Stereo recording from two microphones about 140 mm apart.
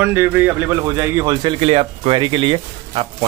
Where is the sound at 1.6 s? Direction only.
45° right (ahead or behind).